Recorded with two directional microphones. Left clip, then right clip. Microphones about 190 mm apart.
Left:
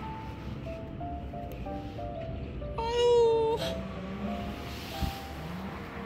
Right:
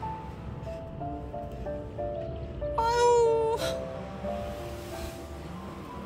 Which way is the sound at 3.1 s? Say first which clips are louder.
Even; 15° right (ahead or behind).